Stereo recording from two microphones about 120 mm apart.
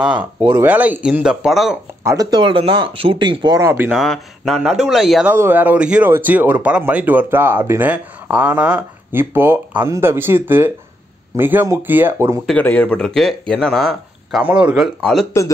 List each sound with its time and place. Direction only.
0.0 s speech: 10° right (ahead or behind)
2.0 s speech: 30° right (ahead or behind)
2.4 s speech: 45° right (ahead or behind)
3.5 s speech: 20° right (ahead or behind)
3.9 s speech: centre (ahead or behind)
5.3 s speech: 15° right (ahead or behind)
12.4 s speech: 10° left (ahead or behind)
14.4 s speech: 10° right (ahead or behind)
15.0 s speech: 5° left (ahead or behind)